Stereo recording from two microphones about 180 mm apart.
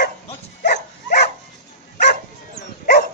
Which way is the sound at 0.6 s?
65° left (ahead or behind).